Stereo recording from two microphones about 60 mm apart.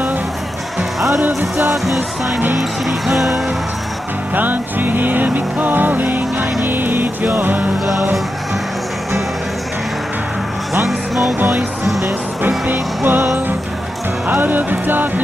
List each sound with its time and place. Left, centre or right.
1.6 s speech: centre
4.4 s music: right
10.9 s music: centre
12.4 s music: right